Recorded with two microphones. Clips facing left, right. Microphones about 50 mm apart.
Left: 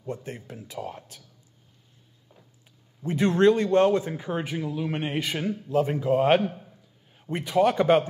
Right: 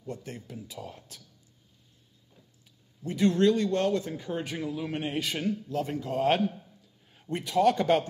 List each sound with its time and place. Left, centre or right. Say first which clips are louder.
0.0 s speech: left 4 dB; left
3.0 s a man's voice: left 3 dB; left
4.5 s a man's voice: left 3 dB; centre
5.6 s a man's voice: left 7 dB; left
6.4 s a sound: even; left
7.2 s a man's voice: left 4 dB; centre